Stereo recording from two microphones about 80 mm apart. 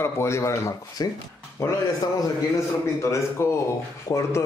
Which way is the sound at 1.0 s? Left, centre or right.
Left.